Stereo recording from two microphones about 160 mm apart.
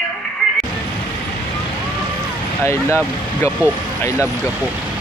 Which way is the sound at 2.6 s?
15° left (ahead or behind).